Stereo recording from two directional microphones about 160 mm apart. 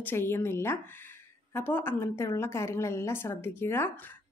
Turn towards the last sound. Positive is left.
turn(degrees=15)  # may be behind; listen again after turning